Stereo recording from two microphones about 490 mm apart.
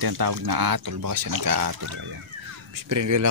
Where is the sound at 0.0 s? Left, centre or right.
Right.